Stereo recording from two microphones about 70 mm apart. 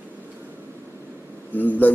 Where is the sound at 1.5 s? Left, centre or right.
Left.